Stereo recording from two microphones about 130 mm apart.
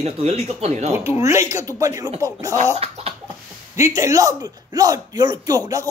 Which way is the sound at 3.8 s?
25° right (ahead or behind).